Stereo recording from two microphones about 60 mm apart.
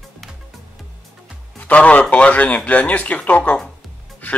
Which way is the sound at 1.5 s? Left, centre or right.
Left.